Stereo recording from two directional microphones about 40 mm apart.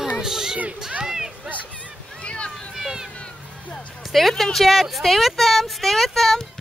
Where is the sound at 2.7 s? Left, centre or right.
Centre.